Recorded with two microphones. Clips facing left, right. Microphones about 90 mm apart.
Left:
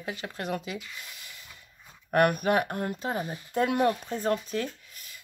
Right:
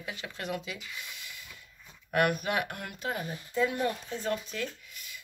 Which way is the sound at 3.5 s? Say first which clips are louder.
Left 4 dB; 60° left (ahead or behind).